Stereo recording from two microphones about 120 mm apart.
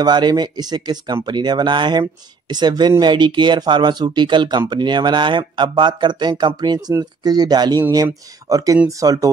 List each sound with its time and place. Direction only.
0.0 s speech: 35° right (ahead or behind)